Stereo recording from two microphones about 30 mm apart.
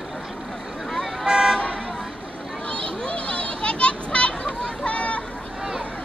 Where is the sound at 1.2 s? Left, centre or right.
Right.